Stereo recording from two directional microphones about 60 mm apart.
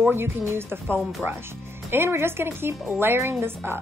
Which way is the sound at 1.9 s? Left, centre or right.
Right.